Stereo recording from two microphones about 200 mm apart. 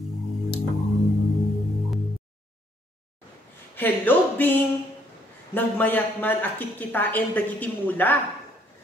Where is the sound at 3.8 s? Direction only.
10° left (ahead or behind).